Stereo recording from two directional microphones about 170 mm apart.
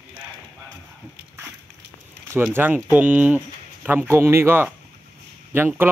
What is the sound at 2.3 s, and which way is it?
Speech, 15° right (ahead or behind).